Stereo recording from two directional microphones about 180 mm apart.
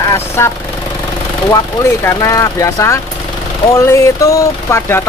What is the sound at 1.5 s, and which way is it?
Speech, 15° left (ahead or behind).